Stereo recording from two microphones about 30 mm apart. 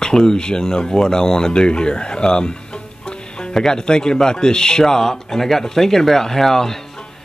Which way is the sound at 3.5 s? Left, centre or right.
Left.